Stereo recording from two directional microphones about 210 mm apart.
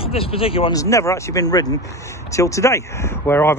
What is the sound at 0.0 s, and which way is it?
Speech, 25° left (ahead or behind).